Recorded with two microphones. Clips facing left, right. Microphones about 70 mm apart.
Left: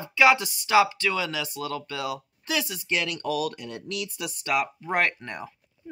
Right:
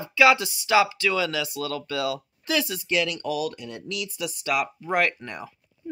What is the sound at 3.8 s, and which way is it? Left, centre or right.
Speech, left.